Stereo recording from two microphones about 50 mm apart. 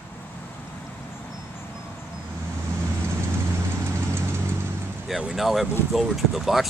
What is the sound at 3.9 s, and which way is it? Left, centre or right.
Vehicle, right.